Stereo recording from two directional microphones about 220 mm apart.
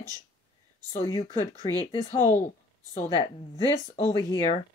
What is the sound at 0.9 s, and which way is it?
Speech, 20° left (ahead or behind).